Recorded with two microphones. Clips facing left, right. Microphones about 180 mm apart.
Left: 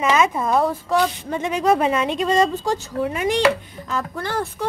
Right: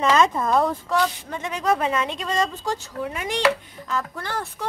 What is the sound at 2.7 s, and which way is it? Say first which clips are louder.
A woman's voice: left 5 dB; 15° left (ahead or behind).